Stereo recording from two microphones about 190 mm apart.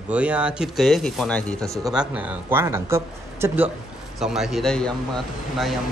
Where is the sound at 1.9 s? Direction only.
5° right (ahead or behind).